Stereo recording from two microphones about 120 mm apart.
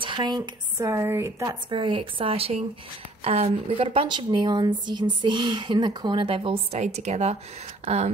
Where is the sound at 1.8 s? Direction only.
45° right (ahead or behind).